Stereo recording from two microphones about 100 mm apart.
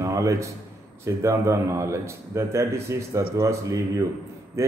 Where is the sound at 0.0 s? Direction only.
30° right (ahead or behind).